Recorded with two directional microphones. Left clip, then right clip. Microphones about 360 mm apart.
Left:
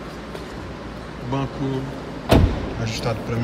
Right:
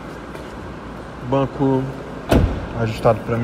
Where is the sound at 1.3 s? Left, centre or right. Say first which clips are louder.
Right 8 dB; centre.